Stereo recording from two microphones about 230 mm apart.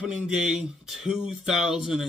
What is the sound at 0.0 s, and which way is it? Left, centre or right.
Speech, centre.